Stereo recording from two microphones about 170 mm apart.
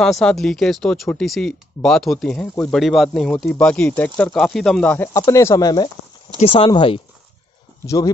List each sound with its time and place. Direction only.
0.0 s speech: 5° left (ahead or behind); by 7.0 s 30° left (ahead or behind)
7.8 s speech: 20° left (ahead or behind)